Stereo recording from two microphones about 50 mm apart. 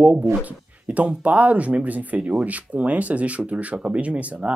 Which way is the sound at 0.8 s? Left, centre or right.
Right.